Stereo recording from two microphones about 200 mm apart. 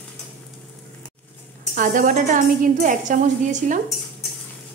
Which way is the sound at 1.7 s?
40° right (ahead or behind).